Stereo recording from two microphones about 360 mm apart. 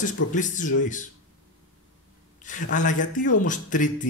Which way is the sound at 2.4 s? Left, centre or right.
Left.